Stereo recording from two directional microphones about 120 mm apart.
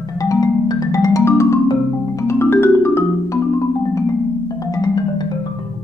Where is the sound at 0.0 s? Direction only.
30° left (ahead or behind).